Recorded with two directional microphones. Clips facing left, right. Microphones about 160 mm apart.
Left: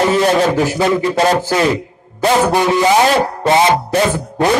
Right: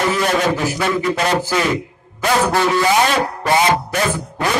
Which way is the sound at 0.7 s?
25° left (ahead or behind).